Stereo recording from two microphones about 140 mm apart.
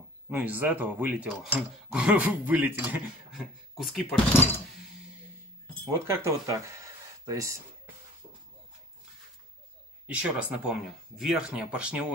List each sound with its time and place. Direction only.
0.3 s speech: 10° right (ahead or behind)
5.9 s speech: 20° right (ahead or behind)
10.0 s speech: 10° right (ahead or behind)